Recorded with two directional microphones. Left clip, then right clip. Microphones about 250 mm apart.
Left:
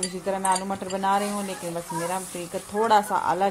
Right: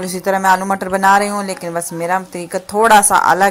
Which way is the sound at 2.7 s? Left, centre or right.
Right.